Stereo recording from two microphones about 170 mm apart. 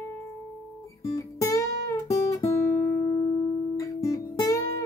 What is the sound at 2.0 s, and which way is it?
Guitar, 20° left (ahead or behind).